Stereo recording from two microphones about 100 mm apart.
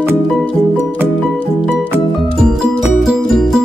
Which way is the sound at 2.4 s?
Centre (ahead or behind).